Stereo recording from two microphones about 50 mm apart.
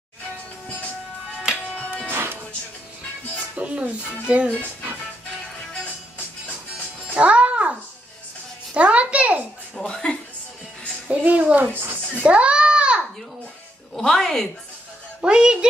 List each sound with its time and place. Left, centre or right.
1.8 s music: left
2.0 s music: right
3.5 s music: right
4.3 s speech: right
7.2 s music: right
8.7 s a sound: right
9.8 s a sound: centre
11.1 s a child's voice: right
11.5 s speech: right
12.3 s a sound: right
13.9 s speech: centre
15.2 s speech: centre